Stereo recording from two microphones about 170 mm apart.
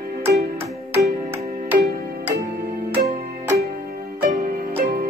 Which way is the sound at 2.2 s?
10° right (ahead or behind).